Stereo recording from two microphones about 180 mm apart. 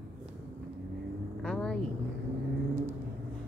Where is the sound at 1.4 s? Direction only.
5° left (ahead or behind).